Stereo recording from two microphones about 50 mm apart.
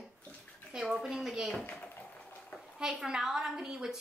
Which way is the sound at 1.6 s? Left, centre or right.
Left.